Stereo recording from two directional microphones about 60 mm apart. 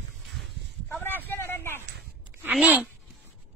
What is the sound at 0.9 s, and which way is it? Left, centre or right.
Speech, left.